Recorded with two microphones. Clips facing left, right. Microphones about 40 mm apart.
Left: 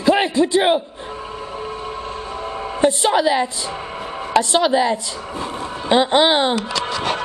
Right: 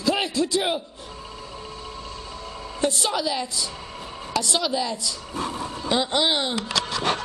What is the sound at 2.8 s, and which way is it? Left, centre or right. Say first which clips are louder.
Speech: left 8 dB; left.